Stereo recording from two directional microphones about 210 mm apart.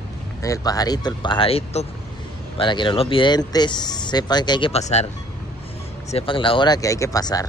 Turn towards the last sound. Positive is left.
turn(degrees=15)  # may be behind; listen again after turning